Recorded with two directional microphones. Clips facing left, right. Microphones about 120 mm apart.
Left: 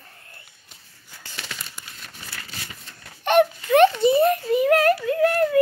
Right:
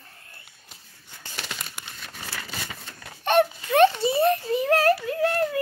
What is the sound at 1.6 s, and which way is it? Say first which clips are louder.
Crumpling: right 1 dB; 70° right (ahead or behind).